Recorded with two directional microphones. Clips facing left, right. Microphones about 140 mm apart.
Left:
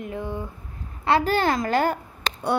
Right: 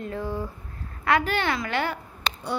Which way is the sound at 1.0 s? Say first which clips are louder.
Left 3 dB; 35° left (ahead or behind).